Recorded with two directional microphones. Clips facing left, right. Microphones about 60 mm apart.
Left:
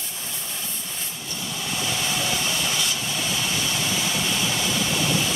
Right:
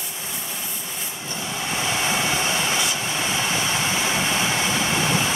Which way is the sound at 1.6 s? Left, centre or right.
Right.